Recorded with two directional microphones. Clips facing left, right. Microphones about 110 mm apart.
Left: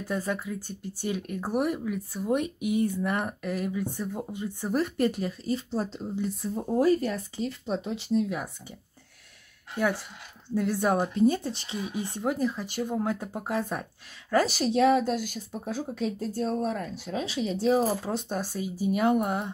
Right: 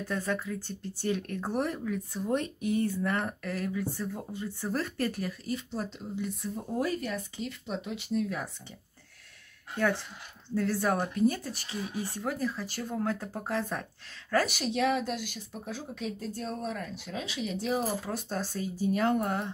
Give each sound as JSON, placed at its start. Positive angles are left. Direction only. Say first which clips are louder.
{"t": 0.1, "sound": "speech", "louder": "left 2 dB", "side_deg": 10}
{"t": 9.8, "sound": "speech", "louder": "left 1 dB", "side_deg": 10}
{"t": 14.3, "sound": "speech", "louder": "left 4 dB", "side_deg": 30}
{"t": 18.3, "sound": "speech", "louder": "left 2 dB", "side_deg": 15}